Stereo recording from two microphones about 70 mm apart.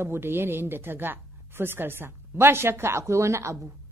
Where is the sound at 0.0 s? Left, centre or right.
Right.